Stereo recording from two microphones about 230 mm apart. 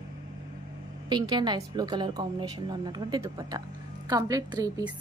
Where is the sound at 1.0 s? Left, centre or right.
Centre.